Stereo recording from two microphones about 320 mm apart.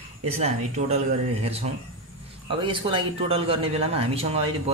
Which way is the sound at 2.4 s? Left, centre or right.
Centre.